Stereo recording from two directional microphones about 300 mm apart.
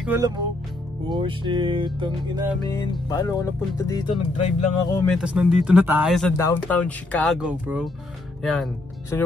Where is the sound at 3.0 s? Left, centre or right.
Centre.